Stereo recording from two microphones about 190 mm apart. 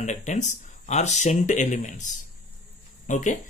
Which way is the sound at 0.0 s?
40° left (ahead or behind).